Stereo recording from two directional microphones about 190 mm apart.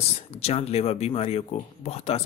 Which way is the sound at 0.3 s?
35° left (ahead or behind).